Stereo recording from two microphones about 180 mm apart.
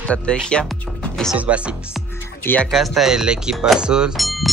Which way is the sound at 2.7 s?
Centre (ahead or behind).